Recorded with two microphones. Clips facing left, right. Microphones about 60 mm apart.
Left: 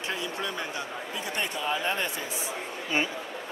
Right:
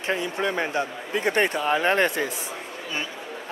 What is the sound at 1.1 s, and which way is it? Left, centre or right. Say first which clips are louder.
Speech: right 11 dB; right.